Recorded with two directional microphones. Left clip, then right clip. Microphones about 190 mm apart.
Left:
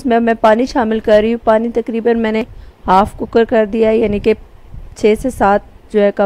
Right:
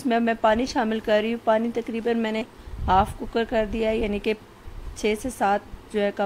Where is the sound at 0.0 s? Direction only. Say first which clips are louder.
Left 10 dB; 40° left (ahead or behind).